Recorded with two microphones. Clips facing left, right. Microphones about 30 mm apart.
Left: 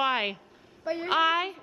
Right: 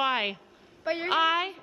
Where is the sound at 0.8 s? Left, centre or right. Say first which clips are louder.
Right 2 dB; right.